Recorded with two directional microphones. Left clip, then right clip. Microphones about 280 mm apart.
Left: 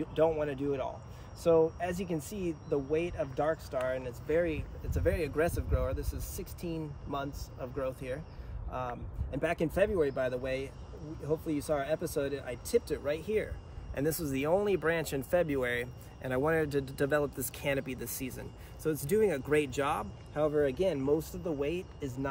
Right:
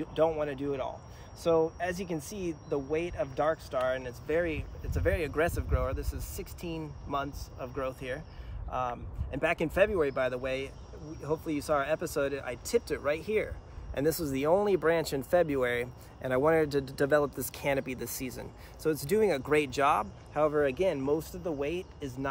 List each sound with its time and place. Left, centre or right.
0.0 s speech: centre; by 18.0 s right
19.0 s speech: right